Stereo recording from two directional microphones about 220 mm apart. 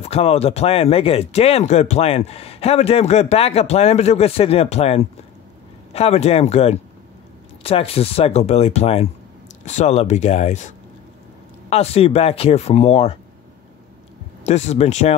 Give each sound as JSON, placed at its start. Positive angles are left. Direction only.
{"t": 0.1, "sound": "speech", "side_deg": 25}
{"t": 11.7, "sound": "speech", "side_deg": 30}
{"t": 14.4, "sound": "speech", "side_deg": 30}